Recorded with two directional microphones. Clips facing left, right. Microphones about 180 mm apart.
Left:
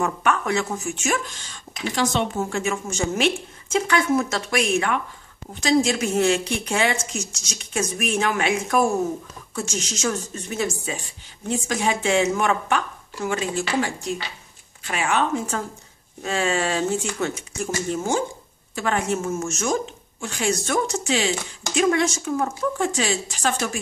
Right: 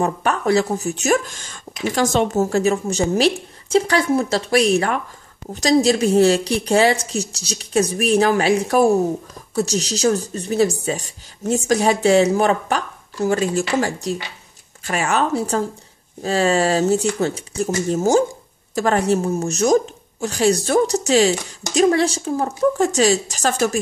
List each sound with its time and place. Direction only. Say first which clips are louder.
0.0 s speech: right 3 dB; 35° right (ahead or behind)